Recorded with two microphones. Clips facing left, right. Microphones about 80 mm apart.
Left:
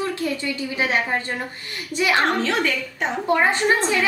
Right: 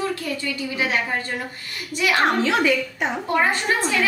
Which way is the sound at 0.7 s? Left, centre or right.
Left.